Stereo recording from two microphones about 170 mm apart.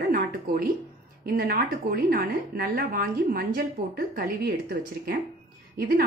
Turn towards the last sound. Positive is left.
turn(degrees=-65)  # may be behind; listen again after turning